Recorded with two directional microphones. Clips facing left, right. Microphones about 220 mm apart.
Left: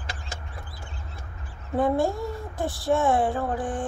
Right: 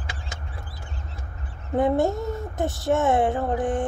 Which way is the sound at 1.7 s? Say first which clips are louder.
Right 2 dB; 20° right (ahead or behind).